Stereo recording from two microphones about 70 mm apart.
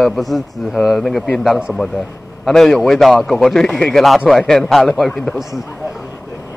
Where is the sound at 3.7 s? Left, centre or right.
Centre.